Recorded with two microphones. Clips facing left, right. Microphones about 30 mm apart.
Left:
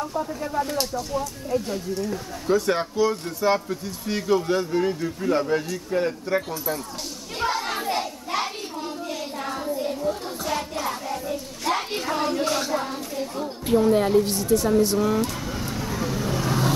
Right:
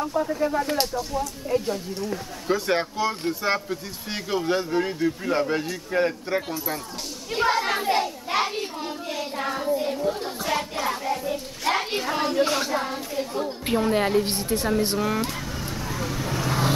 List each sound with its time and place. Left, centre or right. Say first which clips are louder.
0.0 s speech: right 4 dB; centre
7.3 s a sound: right 3 dB; centre
13.7 s speech: left 4 dB; right
14.2 s speech: left 4 dB; right
15.0 s speech: left 3 dB; centre
15.9 s vehicle: left 2 dB; centre